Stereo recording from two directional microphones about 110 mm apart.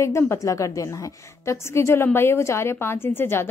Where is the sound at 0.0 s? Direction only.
25° left (ahead or behind).